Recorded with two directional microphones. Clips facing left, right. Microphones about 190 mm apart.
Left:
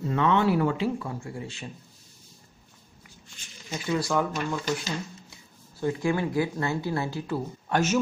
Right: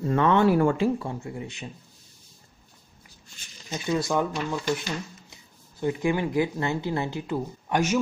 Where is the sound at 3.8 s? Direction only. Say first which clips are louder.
Right 1 dB; 20° right (ahead or behind).